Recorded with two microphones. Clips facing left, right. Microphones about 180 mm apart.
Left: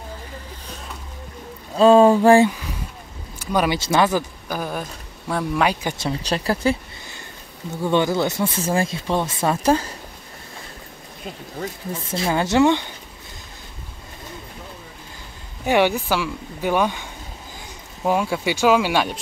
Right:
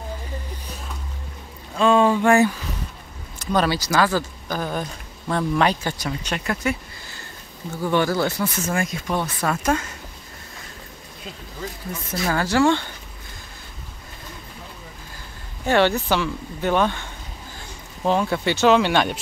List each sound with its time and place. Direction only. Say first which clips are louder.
1.8 s speech: left 5 dB; 40° left (ahead or behind)
3.3 s speech: even; 10° left (ahead or behind)
3.7 s speech: left 2 dB; 25° left (ahead or behind)
4.5 s speech: right 1 dB; 10° left (ahead or behind)
5.9 s speech: left 4 dB; 30° left (ahead or behind)
7.7 s speech: left 1 dB; 20° left (ahead or behind)
11.9 s speech: left 1 dB; 25° left (ahead or behind)
15.6 s speech: even; 10° left (ahead or behind)